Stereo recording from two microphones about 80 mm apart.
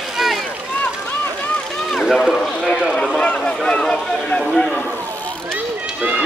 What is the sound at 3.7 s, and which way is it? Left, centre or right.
Speech, centre.